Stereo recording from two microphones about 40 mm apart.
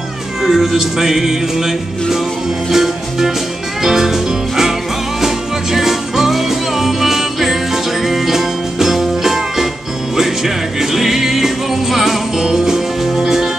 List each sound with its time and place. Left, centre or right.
0.4 s music: centre
5.2 s music: centre